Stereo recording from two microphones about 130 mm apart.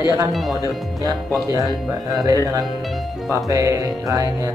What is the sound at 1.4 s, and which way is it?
Speech, 25° right (ahead or behind).